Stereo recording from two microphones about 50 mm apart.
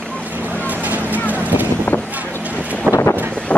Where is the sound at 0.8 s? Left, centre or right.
Right.